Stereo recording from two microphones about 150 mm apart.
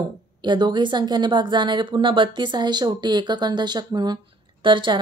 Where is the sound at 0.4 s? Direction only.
30° right (ahead or behind).